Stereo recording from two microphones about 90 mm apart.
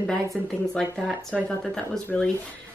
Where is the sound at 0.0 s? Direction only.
Centre (ahead or behind).